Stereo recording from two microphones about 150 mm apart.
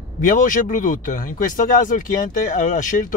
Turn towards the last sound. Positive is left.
turn(degrees=60)  # may be behind; listen again after turning